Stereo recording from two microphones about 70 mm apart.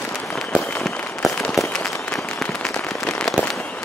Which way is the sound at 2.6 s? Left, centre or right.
Centre.